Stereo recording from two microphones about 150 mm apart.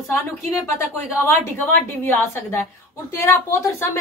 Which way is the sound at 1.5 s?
15° left (ahead or behind).